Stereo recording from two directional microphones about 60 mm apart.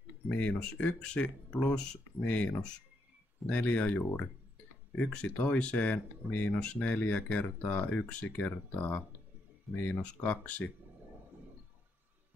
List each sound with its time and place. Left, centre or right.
0.3 s speech: left
10.0 s speech: left